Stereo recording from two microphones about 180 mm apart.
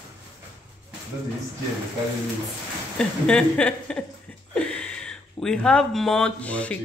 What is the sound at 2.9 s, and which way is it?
Speech, 5° left (ahead or behind).